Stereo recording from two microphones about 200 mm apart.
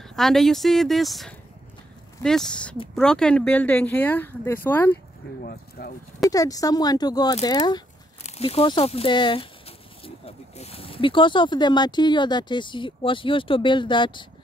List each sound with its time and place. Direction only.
0.0 s speech: centre (ahead or behind)
5.4 s speech: 45° left (ahead or behind)
6.3 s speech: 15° left (ahead or behind)